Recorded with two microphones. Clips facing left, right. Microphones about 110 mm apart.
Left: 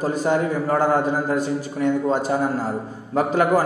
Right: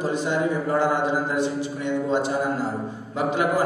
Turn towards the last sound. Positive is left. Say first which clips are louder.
# left 4 dB
turn(degrees=45)  # may be behind; listen again after turning